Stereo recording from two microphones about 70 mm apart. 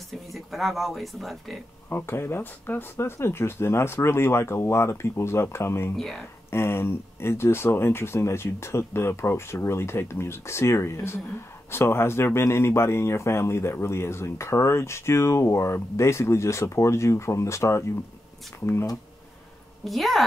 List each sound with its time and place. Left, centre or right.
0.3 s speech: centre
1.9 s speech: left
19.8 s speech: centre